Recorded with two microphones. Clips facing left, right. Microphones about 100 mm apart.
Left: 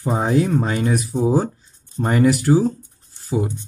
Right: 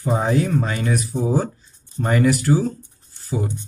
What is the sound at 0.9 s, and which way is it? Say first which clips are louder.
Speech: left 2 dB; 15° left (ahead or behind).